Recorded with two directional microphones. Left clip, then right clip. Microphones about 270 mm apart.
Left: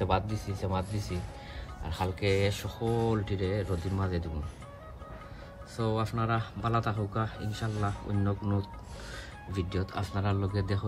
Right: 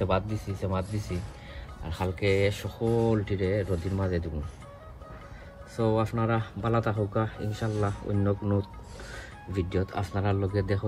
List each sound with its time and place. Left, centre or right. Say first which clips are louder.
0.0 s speech: right 2 dB; centre
5.8 s speech: right 5 dB; centre